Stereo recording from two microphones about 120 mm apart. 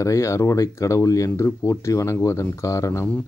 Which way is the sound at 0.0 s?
25° left (ahead or behind).